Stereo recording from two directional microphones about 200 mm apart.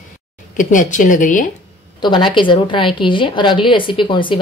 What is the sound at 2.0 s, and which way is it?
A woman's voice, 25° left (ahead or behind).